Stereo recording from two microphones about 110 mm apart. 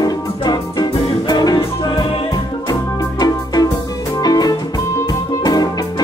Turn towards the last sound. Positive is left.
turn(degrees=35)  # may be behind; listen again after turning